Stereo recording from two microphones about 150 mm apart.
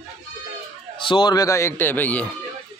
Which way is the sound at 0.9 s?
30° left (ahead or behind).